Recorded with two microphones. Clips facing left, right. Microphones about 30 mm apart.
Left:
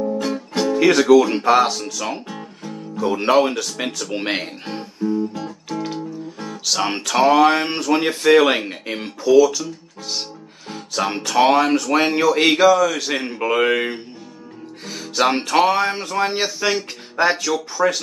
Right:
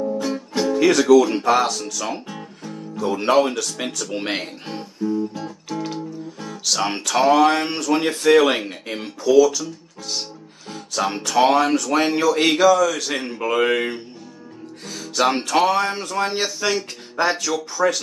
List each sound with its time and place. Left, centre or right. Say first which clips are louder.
0.2 s music: left 1 dB; left
0.7 s speech: left 1 dB; centre
5.4 s music: left 1 dB; centre
6.4 s speech: left 1 dB; centre